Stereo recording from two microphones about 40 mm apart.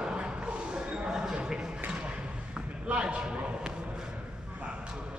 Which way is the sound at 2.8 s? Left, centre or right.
Right.